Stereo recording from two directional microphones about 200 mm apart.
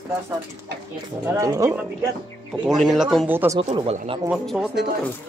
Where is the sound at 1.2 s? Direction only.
15° right (ahead or behind).